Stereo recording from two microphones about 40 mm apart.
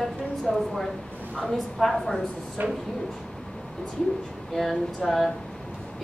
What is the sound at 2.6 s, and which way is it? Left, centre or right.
Speech, right.